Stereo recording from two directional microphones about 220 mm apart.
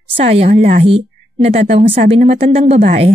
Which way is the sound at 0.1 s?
30° right (ahead or behind).